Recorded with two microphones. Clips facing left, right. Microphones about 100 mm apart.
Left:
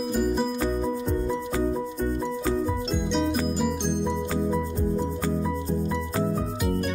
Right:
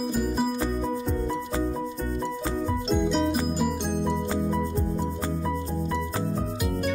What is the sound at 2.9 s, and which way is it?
Music, centre (ahead or behind).